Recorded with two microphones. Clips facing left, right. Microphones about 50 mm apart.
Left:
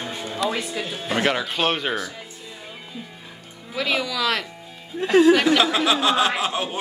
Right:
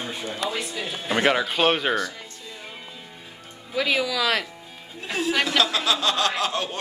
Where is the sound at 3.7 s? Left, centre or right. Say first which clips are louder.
Right 1 dB; centre.